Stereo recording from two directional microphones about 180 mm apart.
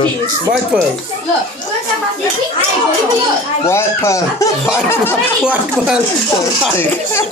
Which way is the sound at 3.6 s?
15° left (ahead or behind).